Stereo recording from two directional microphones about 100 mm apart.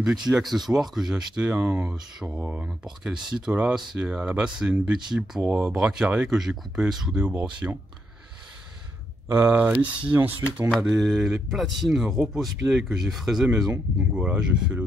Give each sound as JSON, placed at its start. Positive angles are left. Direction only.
{"t": 0.3, "sound": "speech", "side_deg": 0}
{"t": 9.3, "sound": "speech", "side_deg": -25}
{"t": 10.8, "sound": "speech", "side_deg": 0}